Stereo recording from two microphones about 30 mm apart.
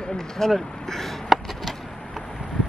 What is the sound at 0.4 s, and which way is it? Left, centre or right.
Speech, centre.